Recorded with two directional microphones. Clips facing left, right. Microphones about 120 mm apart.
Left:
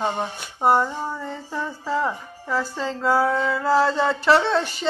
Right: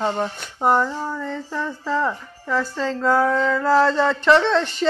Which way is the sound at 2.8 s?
10° left (ahead or behind).